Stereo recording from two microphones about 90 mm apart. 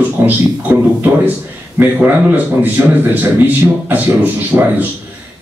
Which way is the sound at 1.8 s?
20° right (ahead or behind).